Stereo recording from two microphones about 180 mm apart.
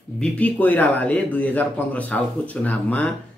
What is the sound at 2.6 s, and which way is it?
Speech, 10° left (ahead or behind).